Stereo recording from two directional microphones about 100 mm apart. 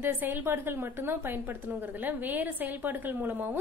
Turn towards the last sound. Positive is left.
turn(degrees=-20)  # may be behind; listen again after turning